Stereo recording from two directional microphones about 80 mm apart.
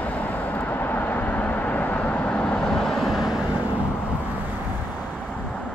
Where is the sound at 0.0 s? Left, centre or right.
Centre.